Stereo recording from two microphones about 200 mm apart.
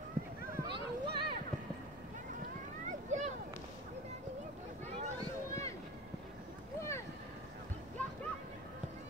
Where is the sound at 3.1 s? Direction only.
40° right (ahead or behind).